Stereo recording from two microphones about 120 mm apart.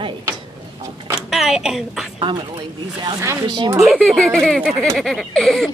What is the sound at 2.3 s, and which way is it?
Speech, 40° right (ahead or behind).